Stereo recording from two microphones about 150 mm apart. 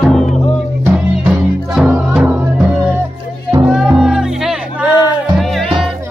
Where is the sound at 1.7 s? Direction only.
5° right (ahead or behind).